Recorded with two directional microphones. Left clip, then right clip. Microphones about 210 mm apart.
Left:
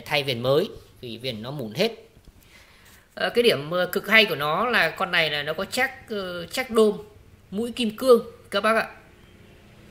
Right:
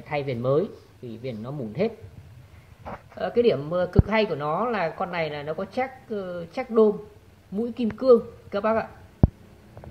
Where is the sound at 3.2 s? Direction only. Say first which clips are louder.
Left 1 dB; 20° left (ahead or behind).